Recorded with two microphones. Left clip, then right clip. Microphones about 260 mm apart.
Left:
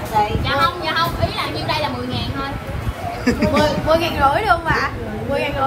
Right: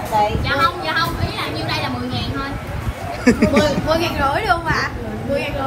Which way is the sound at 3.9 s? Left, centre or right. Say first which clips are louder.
Left 2 dB; left.